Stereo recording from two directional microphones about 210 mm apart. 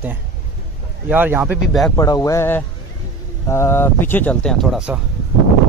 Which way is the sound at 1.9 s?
15° left (ahead or behind).